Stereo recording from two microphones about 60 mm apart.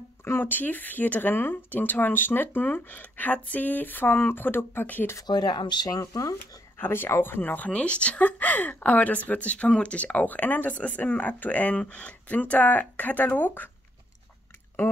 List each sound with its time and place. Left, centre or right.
0.2 s speech: left
5.9 s speech: left
6.8 s speech: left